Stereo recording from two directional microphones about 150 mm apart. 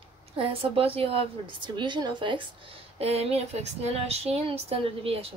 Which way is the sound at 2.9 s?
45° right (ahead or behind).